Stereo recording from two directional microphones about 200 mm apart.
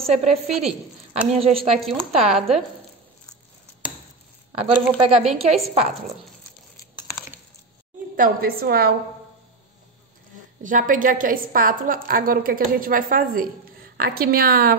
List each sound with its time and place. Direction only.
0.0 s a woman's voice: 30° right (ahead or behind)
0.5 s a woman's voice: centre (ahead or behind)
1.4 s speech: 30° right (ahead or behind)
1.8 s a woman's voice: centre (ahead or behind)
4.6 s a woman's voice: 30° right (ahead or behind)
8.2 s a woman's voice: 50° right (ahead or behind)
10.6 s a woman's voice: 40° right (ahead or behind)